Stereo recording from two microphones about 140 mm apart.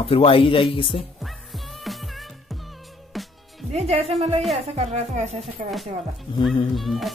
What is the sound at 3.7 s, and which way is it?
Speech, 50° right (ahead or behind).